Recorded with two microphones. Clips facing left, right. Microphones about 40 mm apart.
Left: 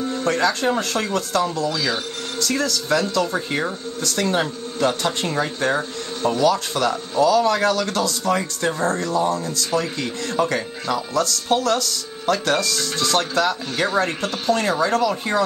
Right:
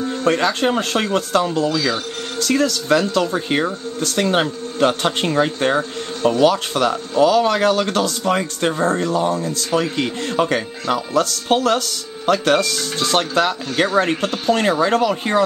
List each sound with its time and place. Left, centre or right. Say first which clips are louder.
0.1 s speech: right 3 dB; right
1.7 s speech: right 3 dB; centre
2.3 s speech: right 5 dB; right